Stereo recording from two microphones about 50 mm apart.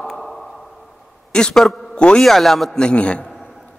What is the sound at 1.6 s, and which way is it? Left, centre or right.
Speech, centre.